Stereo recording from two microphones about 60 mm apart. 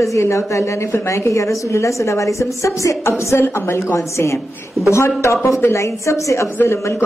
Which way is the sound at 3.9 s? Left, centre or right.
Left.